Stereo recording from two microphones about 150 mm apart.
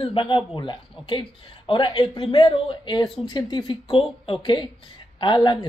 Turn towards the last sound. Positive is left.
turn(degrees=30)  # may be behind; listen again after turning